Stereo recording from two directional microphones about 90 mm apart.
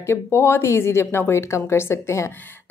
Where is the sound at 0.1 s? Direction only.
30° left (ahead or behind).